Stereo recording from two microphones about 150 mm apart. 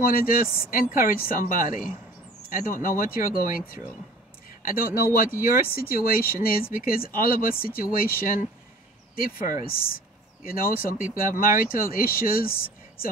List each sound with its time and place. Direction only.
0.0 s speech: 70° left (ahead or behind)
4.6 s speech: 75° left (ahead or behind)
9.7 s speech: 80° left